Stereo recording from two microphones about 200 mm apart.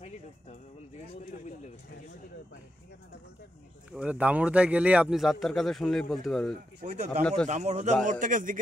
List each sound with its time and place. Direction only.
3.9 s a man's voice: 5° right (ahead or behind)
6.8 s a man's voice: 35° right (ahead or behind)